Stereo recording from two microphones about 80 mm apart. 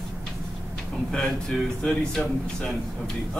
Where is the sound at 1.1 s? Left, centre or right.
Centre.